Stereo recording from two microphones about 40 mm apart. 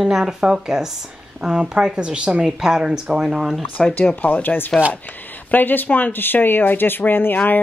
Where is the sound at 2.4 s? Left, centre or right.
Centre.